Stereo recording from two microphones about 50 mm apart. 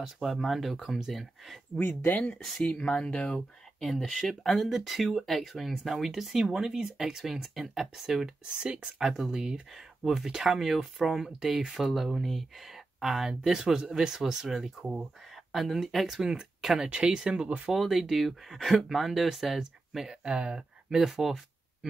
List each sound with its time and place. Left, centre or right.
0.0 s speech: centre
1.8 s speech: left
2.8 s speech: centre
3.8 s speech: centre
4.6 s speech: centre
15.3 s speech: centre
16.2 s speech: centre
17.6 s speech: centre
20.9 s speech: centre